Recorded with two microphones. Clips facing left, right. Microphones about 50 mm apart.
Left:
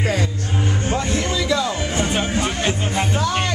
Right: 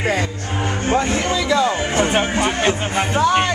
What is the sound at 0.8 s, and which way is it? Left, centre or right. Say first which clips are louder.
Speech: right 7 dB; right.